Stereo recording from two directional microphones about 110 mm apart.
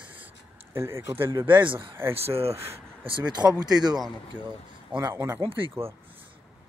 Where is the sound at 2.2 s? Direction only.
65° right (ahead or behind).